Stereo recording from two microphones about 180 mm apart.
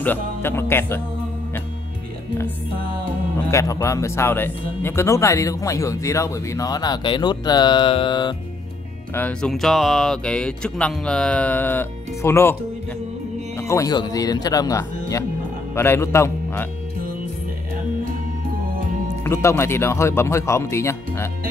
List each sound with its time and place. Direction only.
0.0 s speech: 10° left (ahead or behind)
3.4 s speech: 15° left (ahead or behind)
9.1 s speech: 5° left (ahead or behind)
13.6 s a man's voice: 15° left (ahead or behind)
19.2 s speech: 15° left (ahead or behind)